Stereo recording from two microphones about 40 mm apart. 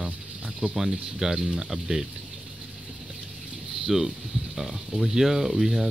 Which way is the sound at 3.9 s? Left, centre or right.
Centre.